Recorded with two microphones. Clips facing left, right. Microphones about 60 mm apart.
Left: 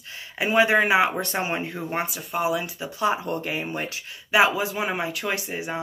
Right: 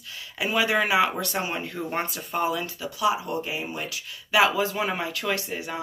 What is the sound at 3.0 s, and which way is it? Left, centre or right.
Speech, left.